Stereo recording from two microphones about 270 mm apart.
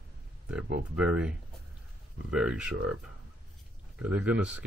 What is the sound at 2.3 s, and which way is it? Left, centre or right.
Speech, centre.